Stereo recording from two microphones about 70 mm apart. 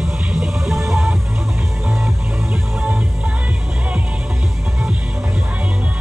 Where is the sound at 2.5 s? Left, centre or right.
Centre.